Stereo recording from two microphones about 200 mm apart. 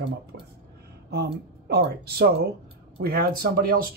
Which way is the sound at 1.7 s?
50° right (ahead or behind).